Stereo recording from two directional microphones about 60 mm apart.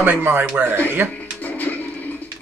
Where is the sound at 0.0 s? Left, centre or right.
Right.